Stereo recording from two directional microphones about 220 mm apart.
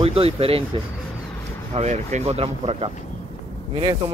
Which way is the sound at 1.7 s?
30° right (ahead or behind).